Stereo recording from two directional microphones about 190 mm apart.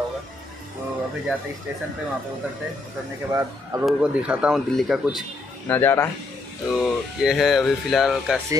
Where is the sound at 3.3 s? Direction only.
15° right (ahead or behind); by 5.2 s centre (ahead or behind).